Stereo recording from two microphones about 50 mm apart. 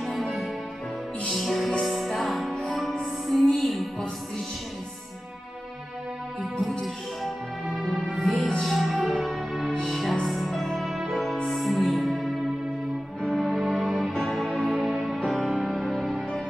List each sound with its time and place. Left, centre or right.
0.0 s music: centre
1.3 s music: centre
2.9 s music: centre
3.4 s music: centre
6.8 s music: centre
14.7 s music: centre
15.2 s music: centre